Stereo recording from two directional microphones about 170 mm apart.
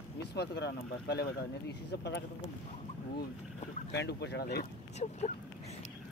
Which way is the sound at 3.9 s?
85° left.